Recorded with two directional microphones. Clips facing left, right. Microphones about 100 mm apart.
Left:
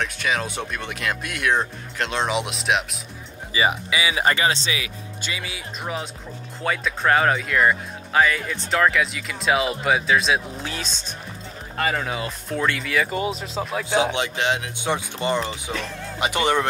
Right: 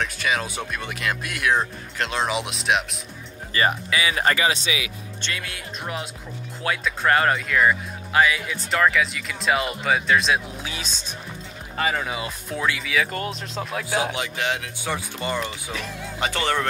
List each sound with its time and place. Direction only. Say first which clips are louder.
0.0 s speech: even; centre (ahead or behind)
4.3 s speech: left 1 dB; 30° left (ahead or behind)
5.2 s speech: even; 5° left (ahead or behind)
14.1 s speech: left 3 dB; 25° left (ahead or behind)